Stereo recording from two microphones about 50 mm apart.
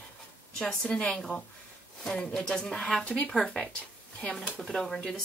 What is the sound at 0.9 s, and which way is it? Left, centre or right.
A woman's voice, left.